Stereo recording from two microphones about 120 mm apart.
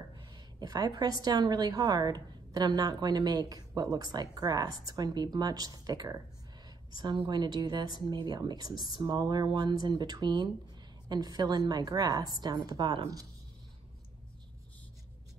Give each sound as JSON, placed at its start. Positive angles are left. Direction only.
{"t": 0.1, "sound": "a woman's voice", "side_deg": -35}